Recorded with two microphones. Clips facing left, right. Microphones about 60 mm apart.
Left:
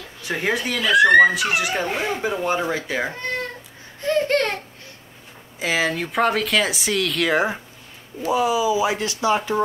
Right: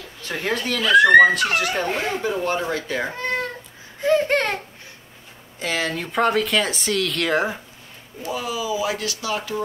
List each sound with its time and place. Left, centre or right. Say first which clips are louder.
0.2 s speech: left 2 dB; centre
2.2 s speech: left 2 dB; centre
4.0 s a sound: right 1 dB; centre
5.6 s speech: left 3 dB; centre
8.2 s speech: left 7 dB; centre